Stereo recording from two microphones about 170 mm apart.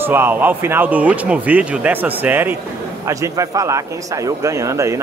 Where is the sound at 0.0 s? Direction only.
10° right (ahead or behind).